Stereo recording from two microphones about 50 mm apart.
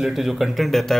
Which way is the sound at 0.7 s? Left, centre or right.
Centre.